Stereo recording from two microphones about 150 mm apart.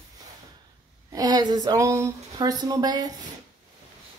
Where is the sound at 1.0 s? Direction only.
25° right (ahead or behind).